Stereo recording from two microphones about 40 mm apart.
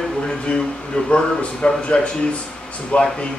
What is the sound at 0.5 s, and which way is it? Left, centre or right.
A man's voice, left.